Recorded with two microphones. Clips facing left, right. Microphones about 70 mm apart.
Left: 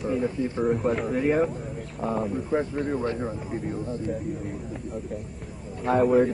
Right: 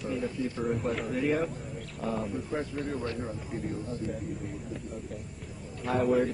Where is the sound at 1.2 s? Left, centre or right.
Left.